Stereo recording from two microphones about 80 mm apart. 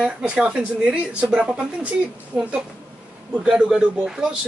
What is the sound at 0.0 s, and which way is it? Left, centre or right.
Speech, centre.